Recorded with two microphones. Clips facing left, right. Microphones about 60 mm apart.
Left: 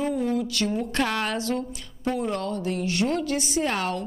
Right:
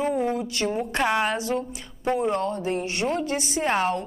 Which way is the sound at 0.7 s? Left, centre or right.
Centre.